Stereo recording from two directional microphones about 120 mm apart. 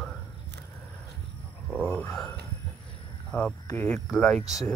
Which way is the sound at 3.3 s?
10° left (ahead or behind).